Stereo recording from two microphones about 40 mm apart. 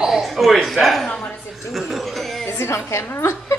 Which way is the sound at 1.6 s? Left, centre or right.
Centre.